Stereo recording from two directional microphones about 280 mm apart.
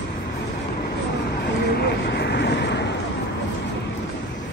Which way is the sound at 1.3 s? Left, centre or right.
Left.